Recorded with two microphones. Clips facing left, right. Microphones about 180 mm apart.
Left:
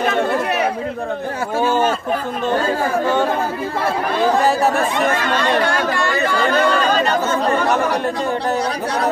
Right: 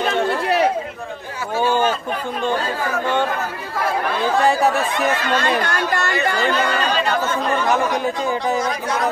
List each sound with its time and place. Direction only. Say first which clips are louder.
1.6 s a sound: left 1 dB; 5° left (ahead or behind)
4.4 s speech: left 1 dB; centre (ahead or behind)
6.4 s speech: left 4 dB; 45° left (ahead or behind)